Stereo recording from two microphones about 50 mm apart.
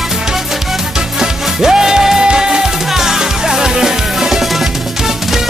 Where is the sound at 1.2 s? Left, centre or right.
Centre.